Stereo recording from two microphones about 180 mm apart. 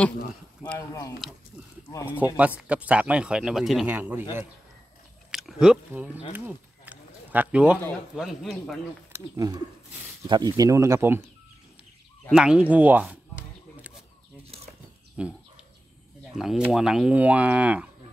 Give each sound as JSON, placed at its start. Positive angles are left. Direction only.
{"t": 0.7, "sound": "speech", "side_deg": 15}
{"t": 2.3, "sound": "speech", "side_deg": -5}
{"t": 6.3, "sound": "a sound", "side_deg": -10}
{"t": 8.2, "sound": "speech", "side_deg": 0}
{"t": 9.1, "sound": "speech", "side_deg": -15}
{"t": 12.3, "sound": "speech", "side_deg": -5}
{"t": 15.1, "sound": "bird", "side_deg": -5}
{"t": 16.3, "sound": "speech", "side_deg": -5}